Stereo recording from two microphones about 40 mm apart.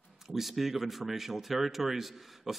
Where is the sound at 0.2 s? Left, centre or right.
Centre.